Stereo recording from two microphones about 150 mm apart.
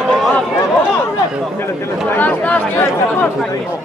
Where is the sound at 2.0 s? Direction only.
10° left (ahead or behind).